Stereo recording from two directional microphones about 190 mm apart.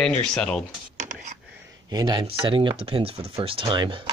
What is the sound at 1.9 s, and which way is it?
Speech, 20° right (ahead or behind).